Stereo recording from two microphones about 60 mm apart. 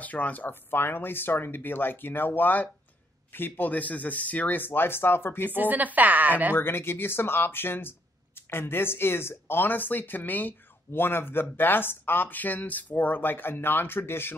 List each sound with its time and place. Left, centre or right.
0.0 s speech: left
5.5 s a woman's voice: right
6.5 s speech: left